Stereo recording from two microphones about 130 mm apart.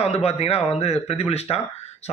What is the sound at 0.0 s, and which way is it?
A man's voice, 55° left (ahead or behind).